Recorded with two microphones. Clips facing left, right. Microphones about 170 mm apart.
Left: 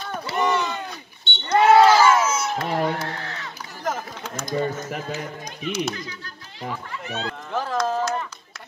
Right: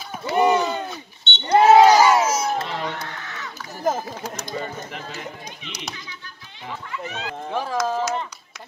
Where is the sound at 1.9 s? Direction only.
15° right (ahead or behind).